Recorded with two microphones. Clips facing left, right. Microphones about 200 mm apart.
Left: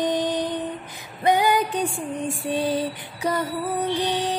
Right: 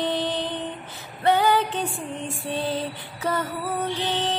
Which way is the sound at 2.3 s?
15° left (ahead or behind).